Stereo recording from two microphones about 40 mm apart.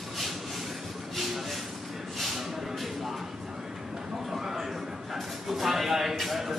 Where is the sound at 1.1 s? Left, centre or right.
Centre.